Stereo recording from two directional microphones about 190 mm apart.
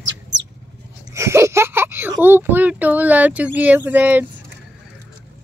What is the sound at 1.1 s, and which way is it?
Speech, 15° right (ahead or behind).